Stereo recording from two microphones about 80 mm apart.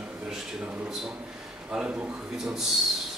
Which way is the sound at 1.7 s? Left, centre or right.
Centre.